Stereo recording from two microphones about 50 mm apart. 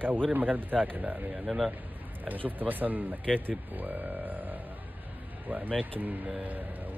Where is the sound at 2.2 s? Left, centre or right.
Right.